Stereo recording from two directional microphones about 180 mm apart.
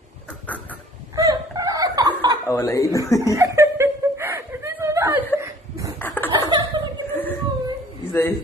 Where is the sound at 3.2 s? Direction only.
15° right (ahead or behind).